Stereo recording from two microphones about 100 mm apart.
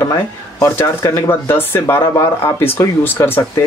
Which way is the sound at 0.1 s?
30° left (ahead or behind).